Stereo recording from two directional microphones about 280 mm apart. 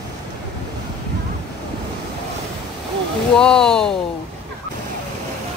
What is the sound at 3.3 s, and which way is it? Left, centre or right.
Speech, centre.